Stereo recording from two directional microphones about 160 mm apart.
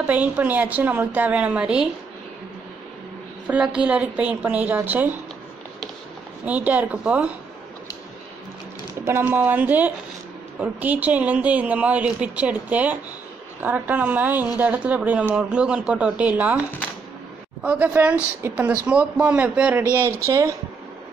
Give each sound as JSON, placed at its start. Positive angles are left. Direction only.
{"t": 0.0, "sound": "speech", "side_deg": -10}
{"t": 3.4, "sound": "speech", "side_deg": -5}
{"t": 6.4, "sound": "speech", "side_deg": -10}
{"t": 9.0, "sound": "speech", "side_deg": -15}
{"t": 17.6, "sound": "speech", "side_deg": -10}
{"t": 20.2, "sound": "speech", "side_deg": -20}